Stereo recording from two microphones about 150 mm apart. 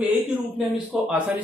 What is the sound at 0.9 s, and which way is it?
Speech, 5° right (ahead or behind).